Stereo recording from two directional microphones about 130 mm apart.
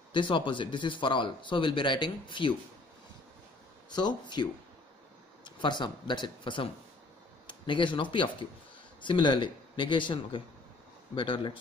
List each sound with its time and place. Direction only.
0.1 s speech: 40° left (ahead or behind)
3.9 s speech: 35° left (ahead or behind)